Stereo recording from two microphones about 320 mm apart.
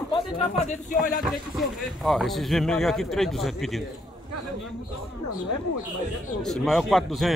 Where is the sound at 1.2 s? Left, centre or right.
Centre.